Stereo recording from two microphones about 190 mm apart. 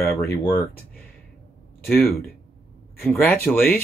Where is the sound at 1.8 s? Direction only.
Centre (ahead or behind).